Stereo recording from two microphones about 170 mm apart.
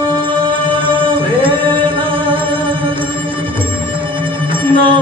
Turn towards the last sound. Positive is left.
turn(degrees=-30)  # may be behind; listen again after turning